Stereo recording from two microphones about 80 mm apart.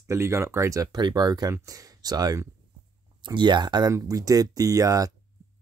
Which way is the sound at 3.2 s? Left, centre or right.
Right.